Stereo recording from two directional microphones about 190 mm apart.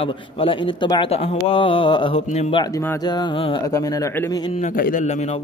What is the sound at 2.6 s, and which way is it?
Speech, 20° left (ahead or behind).